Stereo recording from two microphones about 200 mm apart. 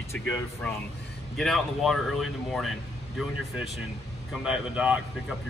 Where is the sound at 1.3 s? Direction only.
Centre (ahead or behind).